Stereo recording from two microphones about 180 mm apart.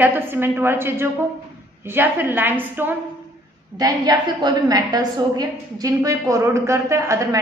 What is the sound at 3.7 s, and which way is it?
A woman's voice, 20° right (ahead or behind).